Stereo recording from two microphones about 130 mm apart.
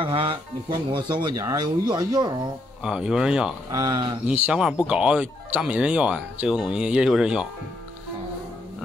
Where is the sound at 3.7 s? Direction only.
35° right (ahead or behind).